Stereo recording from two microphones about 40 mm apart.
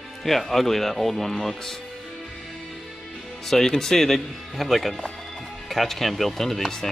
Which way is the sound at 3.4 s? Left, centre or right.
Centre.